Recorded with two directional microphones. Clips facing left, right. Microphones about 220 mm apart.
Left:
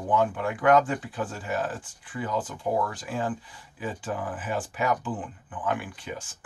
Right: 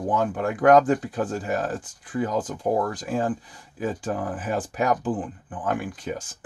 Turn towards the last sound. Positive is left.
turn(degrees=-40)  # may be behind; listen again after turning